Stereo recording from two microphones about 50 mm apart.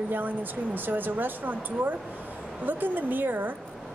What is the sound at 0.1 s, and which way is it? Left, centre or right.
A woman's voice, right.